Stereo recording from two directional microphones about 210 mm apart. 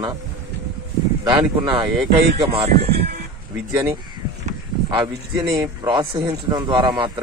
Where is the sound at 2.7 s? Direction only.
50° right (ahead or behind).